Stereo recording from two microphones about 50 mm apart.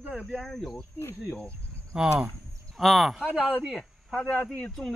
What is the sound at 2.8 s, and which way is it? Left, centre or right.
Speech, centre.